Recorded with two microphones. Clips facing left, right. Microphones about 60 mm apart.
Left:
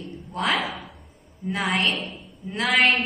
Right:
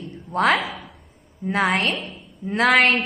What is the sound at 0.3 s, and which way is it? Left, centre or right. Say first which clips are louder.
Speech: right 6 dB; right.